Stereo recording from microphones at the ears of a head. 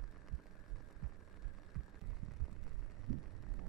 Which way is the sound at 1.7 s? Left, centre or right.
Right.